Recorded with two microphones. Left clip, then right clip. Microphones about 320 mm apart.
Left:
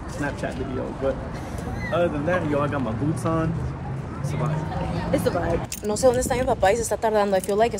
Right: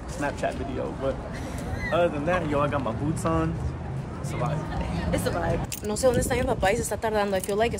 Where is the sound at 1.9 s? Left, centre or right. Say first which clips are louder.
Left 1 dB; centre.